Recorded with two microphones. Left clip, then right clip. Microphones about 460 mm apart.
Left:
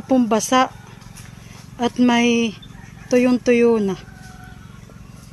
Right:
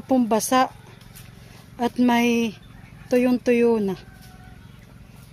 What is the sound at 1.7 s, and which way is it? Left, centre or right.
Speech, right.